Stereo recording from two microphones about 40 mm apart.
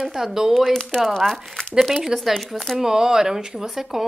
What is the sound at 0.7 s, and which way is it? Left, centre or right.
Speech, centre.